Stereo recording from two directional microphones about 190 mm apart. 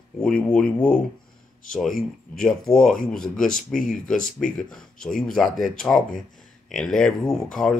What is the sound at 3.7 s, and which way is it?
Speech, 45° left (ahead or behind).